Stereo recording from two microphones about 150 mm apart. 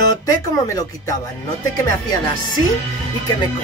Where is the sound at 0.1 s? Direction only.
25° left (ahead or behind).